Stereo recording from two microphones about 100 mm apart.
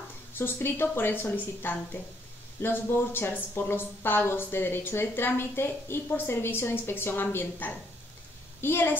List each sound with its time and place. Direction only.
0.3 s a woman's voice: 20° left (ahead or behind)